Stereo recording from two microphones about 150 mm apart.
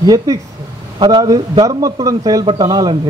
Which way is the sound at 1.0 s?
30° right (ahead or behind).